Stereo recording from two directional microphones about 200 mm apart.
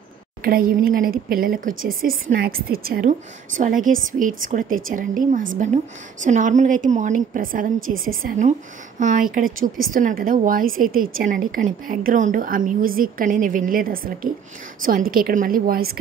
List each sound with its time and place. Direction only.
0.4 s a woman's voice: 50° right (ahead or behind)